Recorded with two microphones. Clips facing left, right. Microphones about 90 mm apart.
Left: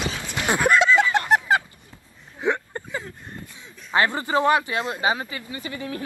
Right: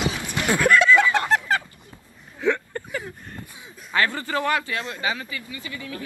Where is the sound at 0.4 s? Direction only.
20° left (ahead or behind).